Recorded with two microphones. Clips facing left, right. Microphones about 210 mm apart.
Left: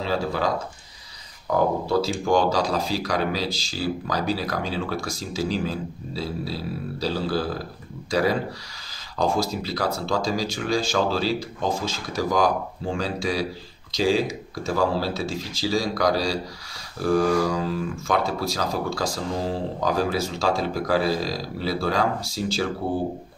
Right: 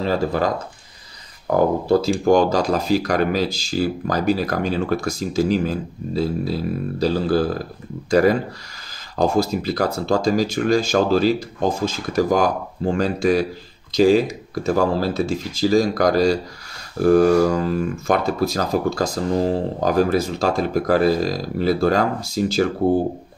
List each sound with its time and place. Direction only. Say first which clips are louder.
0.0 s speech: right 5 dB; 50° right (ahead or behind)
1.5 s speech: right 5 dB; 55° right (ahead or behind)